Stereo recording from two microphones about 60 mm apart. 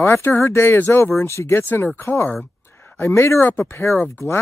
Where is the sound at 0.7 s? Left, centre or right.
Left.